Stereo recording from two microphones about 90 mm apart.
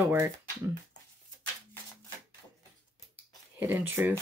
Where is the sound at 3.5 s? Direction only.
25° right (ahead or behind).